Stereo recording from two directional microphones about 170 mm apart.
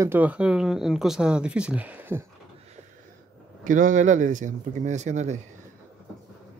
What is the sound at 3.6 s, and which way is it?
Speech, 50° right (ahead or behind).